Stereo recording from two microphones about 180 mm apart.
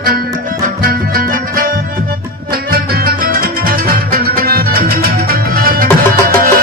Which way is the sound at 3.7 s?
55° right (ahead or behind).